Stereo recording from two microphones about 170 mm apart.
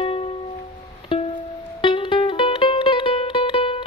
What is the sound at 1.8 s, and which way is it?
Music, 30° left (ahead or behind).